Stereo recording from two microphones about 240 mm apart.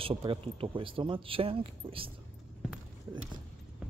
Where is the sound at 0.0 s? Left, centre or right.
Right.